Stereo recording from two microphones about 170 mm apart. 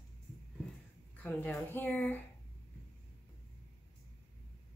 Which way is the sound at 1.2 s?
10° left (ahead or behind).